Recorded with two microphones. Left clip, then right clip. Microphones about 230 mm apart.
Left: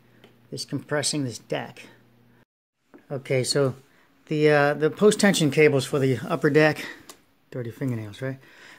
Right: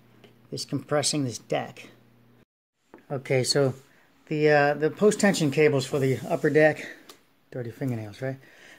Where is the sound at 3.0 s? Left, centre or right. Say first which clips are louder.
Even; centre.